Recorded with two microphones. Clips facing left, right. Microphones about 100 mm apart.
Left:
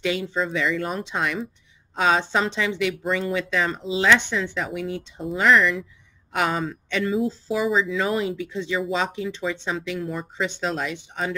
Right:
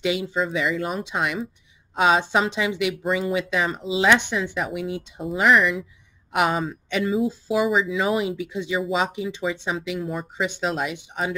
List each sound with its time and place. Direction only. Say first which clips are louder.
0.0 s speech: right 1 dB; 15° right (ahead or behind)
1.1 s speech: right 1 dB; 15° right (ahead or behind)
8.2 s speech: even; 15° right (ahead or behind)